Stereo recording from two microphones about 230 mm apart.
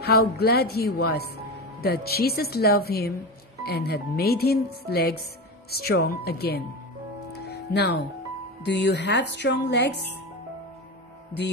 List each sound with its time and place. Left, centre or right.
0.0 s speech: left
7.3 s music: left
8.6 s speech: left